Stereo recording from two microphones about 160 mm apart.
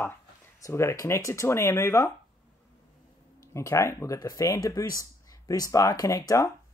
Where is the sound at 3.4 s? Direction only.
20° left (ahead or behind).